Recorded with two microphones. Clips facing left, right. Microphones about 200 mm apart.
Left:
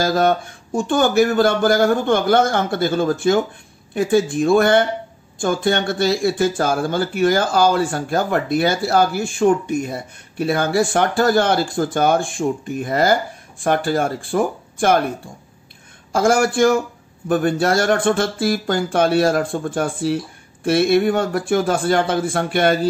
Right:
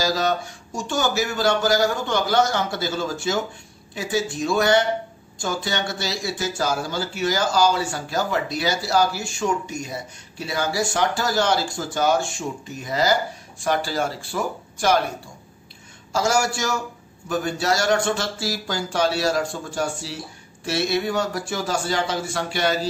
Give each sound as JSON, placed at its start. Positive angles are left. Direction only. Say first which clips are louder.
{"t": 0.0, "sound": "speech", "louder": "left 5 dB", "side_deg": 55}
{"t": 16.1, "sound": "speech", "louder": "left 5 dB", "side_deg": 55}